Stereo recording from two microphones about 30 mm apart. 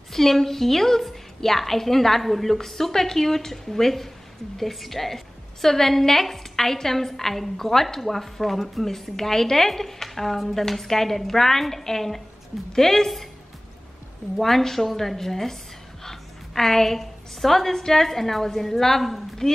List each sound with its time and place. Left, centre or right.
0.1 s a woman's voice: centre
14.4 s a woman's voice: centre